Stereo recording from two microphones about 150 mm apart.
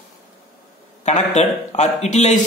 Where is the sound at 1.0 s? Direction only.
50° left (ahead or behind).